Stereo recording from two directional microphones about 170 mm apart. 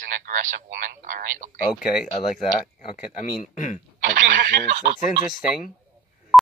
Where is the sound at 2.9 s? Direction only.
45° left (ahead or behind).